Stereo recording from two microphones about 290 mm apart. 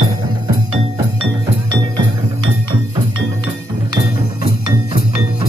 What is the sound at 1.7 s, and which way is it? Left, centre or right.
Music, centre.